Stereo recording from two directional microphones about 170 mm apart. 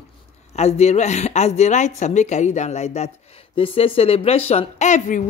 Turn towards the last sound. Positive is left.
turn(degrees=45)  # may be behind; listen again after turning